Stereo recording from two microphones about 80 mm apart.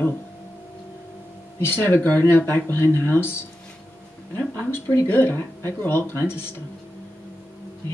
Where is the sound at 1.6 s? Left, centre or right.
Left.